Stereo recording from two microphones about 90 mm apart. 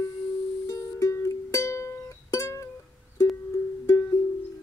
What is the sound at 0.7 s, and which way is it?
Music, 35° left (ahead or behind).